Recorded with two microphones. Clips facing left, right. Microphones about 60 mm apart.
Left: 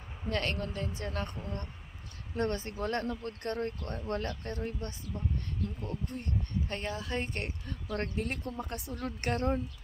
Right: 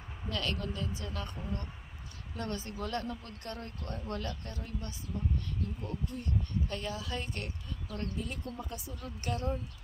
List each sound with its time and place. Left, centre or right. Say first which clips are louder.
0.3 s speech: left 3 dB; left
2.3 s speech: left 5 dB; left
7.9 s speech: left 5 dB; left